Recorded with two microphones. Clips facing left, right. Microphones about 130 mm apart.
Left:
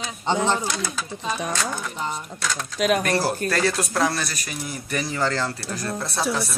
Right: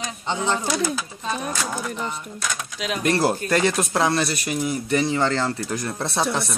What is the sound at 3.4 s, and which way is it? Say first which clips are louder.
Speech: right 2 dB; 20° right (ahead or behind).